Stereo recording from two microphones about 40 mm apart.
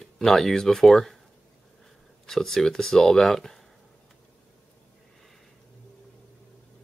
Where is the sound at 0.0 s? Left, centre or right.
Centre.